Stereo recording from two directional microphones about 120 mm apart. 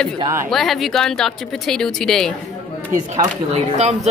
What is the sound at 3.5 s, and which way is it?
Speech, 70° right (ahead or behind).